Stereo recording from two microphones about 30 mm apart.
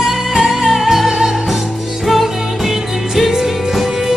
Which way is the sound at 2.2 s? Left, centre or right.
Centre.